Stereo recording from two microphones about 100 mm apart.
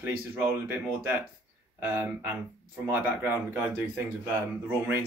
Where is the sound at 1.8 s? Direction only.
25° right (ahead or behind).